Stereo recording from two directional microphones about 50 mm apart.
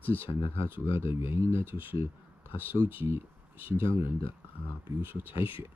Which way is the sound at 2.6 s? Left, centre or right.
Right.